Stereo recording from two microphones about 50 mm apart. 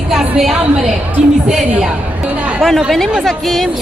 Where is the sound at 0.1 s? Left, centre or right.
Centre.